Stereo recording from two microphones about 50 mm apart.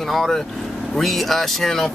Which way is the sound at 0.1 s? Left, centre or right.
Centre.